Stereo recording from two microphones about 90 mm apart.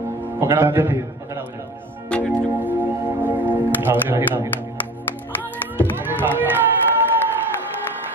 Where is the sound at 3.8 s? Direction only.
20° right (ahead or behind).